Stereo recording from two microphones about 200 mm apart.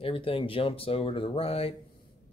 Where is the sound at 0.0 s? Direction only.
30° left (ahead or behind).